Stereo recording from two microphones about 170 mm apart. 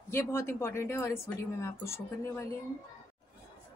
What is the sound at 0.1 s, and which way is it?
A woman's voice, 15° left (ahead or behind).